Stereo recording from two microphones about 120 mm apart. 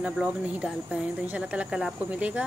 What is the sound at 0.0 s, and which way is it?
Speech, 5° right (ahead or behind).